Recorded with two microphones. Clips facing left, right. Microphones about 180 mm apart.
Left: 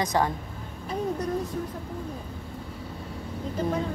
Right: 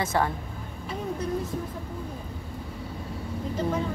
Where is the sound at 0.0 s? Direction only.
15° left (ahead or behind).